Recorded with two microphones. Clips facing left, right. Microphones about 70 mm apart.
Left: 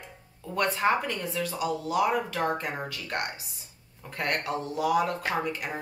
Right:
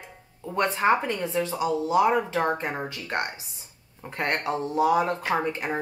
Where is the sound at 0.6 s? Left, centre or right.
Right.